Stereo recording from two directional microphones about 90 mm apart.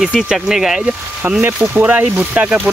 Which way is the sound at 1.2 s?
15° right (ahead or behind).